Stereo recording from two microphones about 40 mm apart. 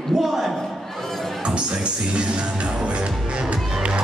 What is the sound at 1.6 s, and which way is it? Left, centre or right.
Music, right.